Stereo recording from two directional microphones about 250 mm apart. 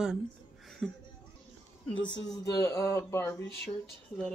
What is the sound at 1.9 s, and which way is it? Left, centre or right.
Speech, left.